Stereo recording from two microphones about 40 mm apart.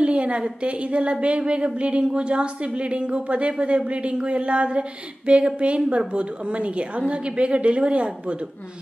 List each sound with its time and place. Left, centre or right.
0.0 s a woman's voice: right